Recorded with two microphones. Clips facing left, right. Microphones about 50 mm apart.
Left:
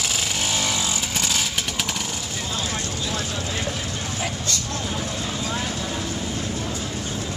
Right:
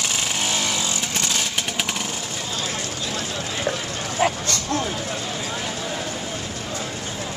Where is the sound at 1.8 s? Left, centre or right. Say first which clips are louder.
Right 1 dB; centre.